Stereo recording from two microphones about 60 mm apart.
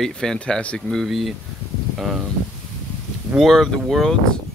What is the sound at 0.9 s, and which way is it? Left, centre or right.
Speech, centre.